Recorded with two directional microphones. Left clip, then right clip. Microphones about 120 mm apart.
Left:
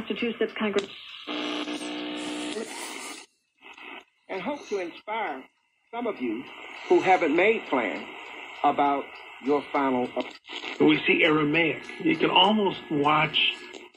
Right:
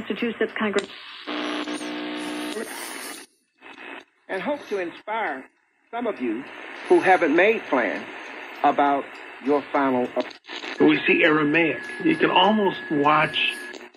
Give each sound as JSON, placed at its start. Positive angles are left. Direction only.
{"t": 0.0, "sound": "radio", "side_deg": -35}
{"t": 2.8, "sound": "wheeze", "side_deg": -35}
{"t": 4.3, "sound": "speech", "side_deg": -30}